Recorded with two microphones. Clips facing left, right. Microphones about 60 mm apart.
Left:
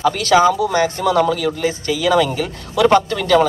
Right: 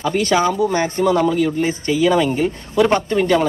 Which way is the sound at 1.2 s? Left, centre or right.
Centre.